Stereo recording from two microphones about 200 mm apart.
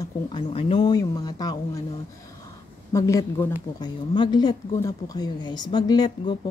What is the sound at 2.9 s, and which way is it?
Speech, 15° left (ahead or behind).